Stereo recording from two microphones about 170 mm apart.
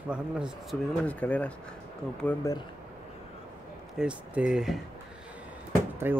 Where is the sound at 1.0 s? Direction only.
10° left (ahead or behind).